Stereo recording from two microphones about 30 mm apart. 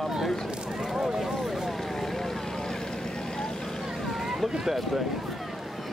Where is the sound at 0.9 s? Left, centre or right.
Centre.